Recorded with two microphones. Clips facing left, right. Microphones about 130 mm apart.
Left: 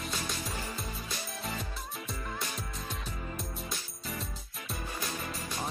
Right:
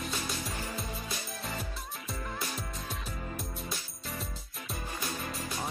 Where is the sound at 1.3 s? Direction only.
Centre (ahead or behind).